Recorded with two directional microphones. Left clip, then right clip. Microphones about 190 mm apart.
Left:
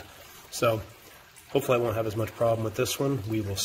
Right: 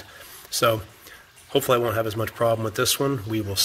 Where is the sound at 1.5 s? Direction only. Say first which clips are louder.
Right 4 dB; 15° right (ahead or behind).